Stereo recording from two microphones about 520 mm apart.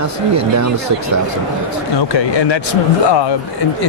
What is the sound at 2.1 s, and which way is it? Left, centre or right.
Speech, left.